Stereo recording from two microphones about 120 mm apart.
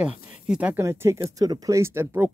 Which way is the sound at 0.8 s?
25° right (ahead or behind).